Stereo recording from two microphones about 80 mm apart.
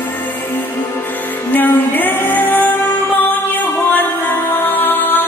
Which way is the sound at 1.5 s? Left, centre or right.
Left.